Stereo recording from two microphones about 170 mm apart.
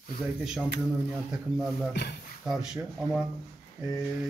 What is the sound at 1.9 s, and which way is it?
Speech, 90° left.